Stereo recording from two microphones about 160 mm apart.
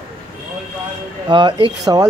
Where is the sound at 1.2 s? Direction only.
30° right (ahead or behind).